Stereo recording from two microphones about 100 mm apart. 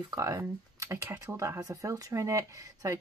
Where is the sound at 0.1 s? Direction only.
35° right (ahead or behind).